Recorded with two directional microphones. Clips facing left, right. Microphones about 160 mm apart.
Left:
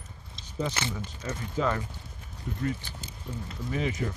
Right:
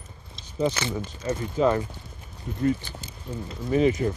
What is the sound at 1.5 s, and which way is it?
Speech, 25° right (ahead or behind).